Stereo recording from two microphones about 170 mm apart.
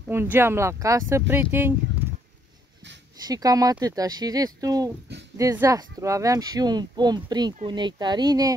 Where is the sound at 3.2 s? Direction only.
20° right (ahead or behind).